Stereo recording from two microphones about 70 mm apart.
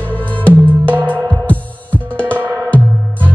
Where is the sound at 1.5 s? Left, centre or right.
Left.